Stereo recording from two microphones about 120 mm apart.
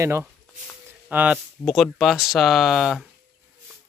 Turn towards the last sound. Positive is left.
turn(degrees=0)  # may be behind; listen again after turning